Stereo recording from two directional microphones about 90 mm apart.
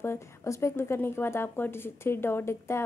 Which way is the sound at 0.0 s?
30° left (ahead or behind).